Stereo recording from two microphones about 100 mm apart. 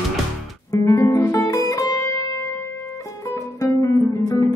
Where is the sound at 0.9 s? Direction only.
30° left (ahead or behind).